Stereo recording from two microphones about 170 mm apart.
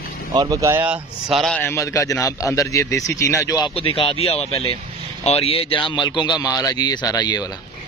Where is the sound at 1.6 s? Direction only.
15° left (ahead or behind).